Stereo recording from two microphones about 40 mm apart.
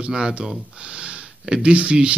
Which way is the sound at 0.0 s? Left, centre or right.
Right.